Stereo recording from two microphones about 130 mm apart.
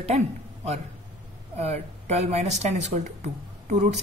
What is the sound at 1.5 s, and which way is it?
Speech, 55° right (ahead or behind).